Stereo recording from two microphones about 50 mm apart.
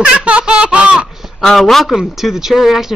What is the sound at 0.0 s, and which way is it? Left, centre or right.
Baby laughter, centre.